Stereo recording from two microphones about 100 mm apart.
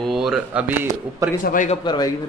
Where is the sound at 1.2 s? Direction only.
35° right (ahead or behind).